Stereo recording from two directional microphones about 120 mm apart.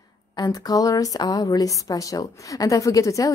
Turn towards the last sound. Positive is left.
turn(degrees=25)  # may be behind; listen again after turning